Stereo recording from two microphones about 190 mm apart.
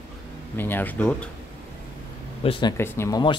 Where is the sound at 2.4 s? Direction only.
25° left (ahead or behind).